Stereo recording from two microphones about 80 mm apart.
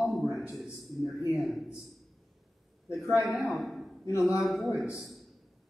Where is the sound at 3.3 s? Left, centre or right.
Centre.